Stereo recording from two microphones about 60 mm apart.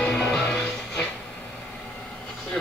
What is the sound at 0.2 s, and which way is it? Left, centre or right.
Music, centre.